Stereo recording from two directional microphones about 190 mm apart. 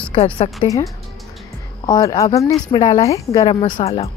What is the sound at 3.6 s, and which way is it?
Speech, 30° left (ahead or behind).